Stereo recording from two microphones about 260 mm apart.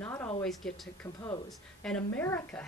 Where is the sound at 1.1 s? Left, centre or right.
Centre.